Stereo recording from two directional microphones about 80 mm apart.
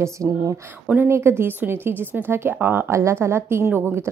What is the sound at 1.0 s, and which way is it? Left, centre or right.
Speech, right.